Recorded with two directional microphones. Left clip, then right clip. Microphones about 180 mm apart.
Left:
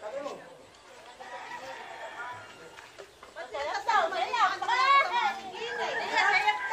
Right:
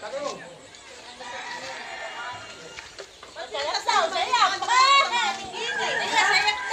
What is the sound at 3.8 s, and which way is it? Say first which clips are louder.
Children playing: right 3 dB; 40° right (ahead or behind).